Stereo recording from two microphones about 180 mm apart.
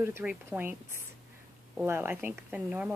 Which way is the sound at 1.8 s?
10° right (ahead or behind).